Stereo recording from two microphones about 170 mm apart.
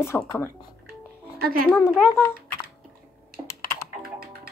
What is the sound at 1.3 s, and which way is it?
Speech, 60° right (ahead or behind).